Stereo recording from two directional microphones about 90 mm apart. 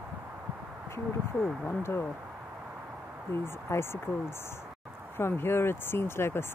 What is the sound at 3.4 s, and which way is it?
Speech, 25° left (ahead or behind).